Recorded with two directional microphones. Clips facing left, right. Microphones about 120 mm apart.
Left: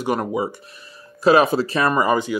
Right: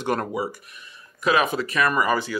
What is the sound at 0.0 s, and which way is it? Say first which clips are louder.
Speech: left 3 dB; 10° left (ahead or behind).